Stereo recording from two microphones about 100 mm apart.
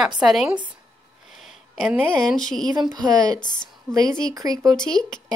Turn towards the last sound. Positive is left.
turn(degrees=5)  # may be behind; listen again after turning